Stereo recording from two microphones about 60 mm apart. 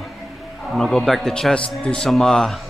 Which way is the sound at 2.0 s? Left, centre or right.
Centre.